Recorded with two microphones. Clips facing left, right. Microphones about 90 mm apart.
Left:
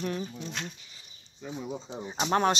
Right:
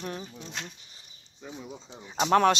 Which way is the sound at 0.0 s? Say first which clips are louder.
Left 4 dB; 25° right (ahead or behind).